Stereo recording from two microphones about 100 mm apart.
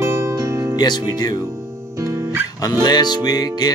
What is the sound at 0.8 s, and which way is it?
Music, 45° left (ahead or behind).